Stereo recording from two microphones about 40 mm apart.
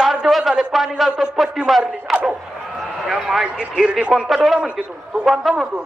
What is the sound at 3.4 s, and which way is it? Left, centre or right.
Speech, right.